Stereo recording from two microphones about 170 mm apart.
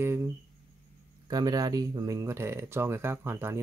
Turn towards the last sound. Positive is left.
turn(degrees=-15)  # may be behind; listen again after turning